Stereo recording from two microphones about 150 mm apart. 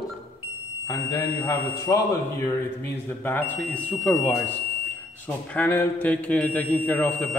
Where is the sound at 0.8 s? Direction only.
15° left (ahead or behind).